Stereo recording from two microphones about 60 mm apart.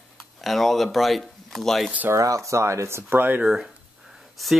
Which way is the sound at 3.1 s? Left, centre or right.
Right.